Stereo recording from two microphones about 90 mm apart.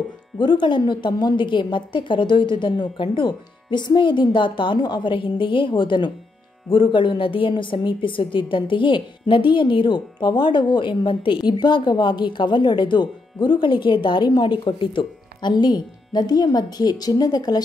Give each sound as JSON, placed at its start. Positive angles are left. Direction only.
{"t": 0.4, "sound": "a woman's voice", "side_deg": 60}